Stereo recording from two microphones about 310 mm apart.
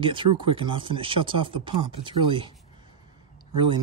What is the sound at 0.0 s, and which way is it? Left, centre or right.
Speech, centre.